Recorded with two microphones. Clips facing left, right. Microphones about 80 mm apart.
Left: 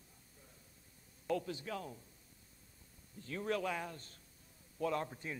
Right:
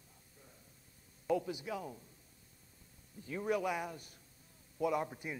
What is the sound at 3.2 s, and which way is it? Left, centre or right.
A man's voice, centre.